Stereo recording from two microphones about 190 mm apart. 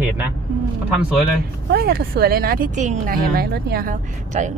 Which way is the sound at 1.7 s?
55° right (ahead or behind).